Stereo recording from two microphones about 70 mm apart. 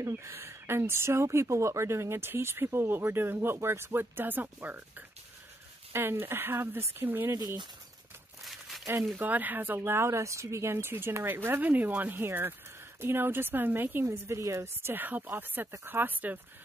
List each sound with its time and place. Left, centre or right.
0.0 s speech: right
8.5 s a sound: centre
9.1 s speech: right
14.0 s speech: right